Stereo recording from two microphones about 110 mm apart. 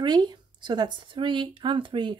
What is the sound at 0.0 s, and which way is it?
A woman's voice, 40° right (ahead or behind).